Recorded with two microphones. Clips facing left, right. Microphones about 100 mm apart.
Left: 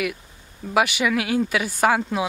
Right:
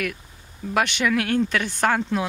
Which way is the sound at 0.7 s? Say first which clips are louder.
Left 1 dB; 5° left (ahead or behind).